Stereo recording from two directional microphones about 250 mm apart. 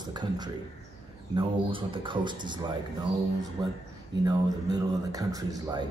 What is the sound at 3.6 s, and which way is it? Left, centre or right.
Speech, centre.